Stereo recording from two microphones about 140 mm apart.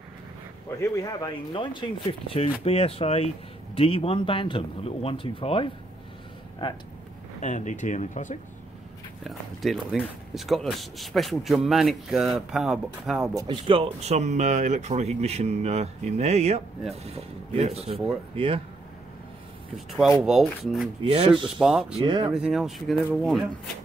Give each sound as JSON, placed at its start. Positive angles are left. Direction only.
{"t": 0.7, "sound": "speech", "side_deg": 20}
{"t": 7.4, "sound": "speech", "side_deg": 60}
{"t": 9.2, "sound": "speech", "side_deg": 0}
{"t": 13.4, "sound": "speech", "side_deg": -35}
{"t": 20.2, "sound": "speech", "side_deg": 0}
{"t": 21.0, "sound": "speech", "side_deg": -45}
{"t": 21.5, "sound": "speech", "side_deg": -5}
{"t": 21.9, "sound": "speech", "side_deg": -35}
{"t": 22.3, "sound": "speech", "side_deg": -5}